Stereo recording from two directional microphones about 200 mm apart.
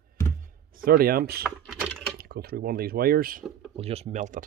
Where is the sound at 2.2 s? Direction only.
50° right (ahead or behind).